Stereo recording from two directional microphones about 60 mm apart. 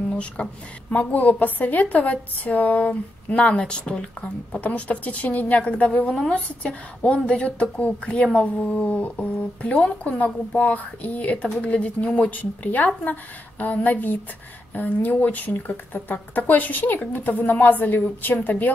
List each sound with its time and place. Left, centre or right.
0.1 s speech: centre
0.8 s a woman's voice: left